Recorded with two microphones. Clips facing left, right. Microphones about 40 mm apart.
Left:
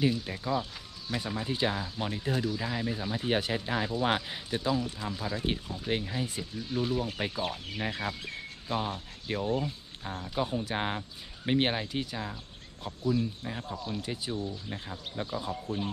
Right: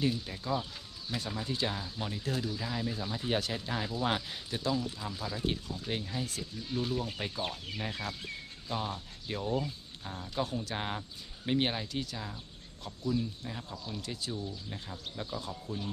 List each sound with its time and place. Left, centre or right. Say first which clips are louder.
0.0 s speech: left 4 dB; centre
2.3 s speech: left 5 dB; centre
2.6 s speech: left 3 dB; left